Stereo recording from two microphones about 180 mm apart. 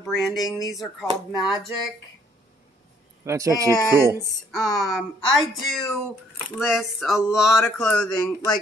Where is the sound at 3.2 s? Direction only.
15° right (ahead or behind).